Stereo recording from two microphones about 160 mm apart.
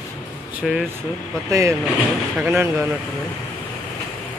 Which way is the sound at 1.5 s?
20° right (ahead or behind).